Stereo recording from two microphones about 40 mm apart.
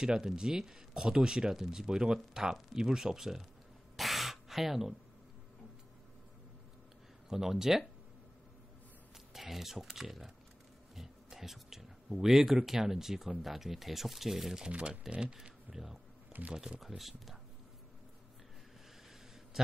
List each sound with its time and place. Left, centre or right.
0.0 s speech: right
3.9 s a sound: centre
7.2 s speech: centre
9.3 s speech: centre
14.7 s speech: right
15.7 s speech: centre
16.3 s speech: right
16.8 s speech: centre
19.6 s a sound: centre